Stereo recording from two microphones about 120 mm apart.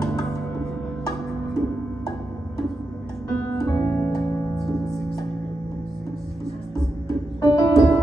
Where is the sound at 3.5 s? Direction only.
30° left (ahead or behind).